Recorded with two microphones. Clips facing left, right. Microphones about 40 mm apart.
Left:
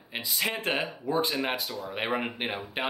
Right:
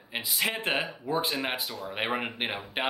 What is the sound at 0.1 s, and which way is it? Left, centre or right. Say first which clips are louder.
Speech: right 1 dB; centre.